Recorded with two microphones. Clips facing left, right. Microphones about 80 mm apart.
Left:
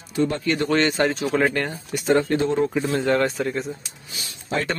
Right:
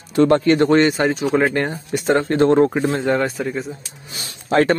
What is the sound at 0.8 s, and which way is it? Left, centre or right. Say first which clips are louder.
Speech: right 4 dB; centre.